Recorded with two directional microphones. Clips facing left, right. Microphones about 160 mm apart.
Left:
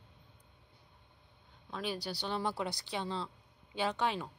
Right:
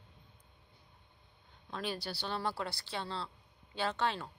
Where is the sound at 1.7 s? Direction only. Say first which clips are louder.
Left 1 dB; 10° left (ahead or behind).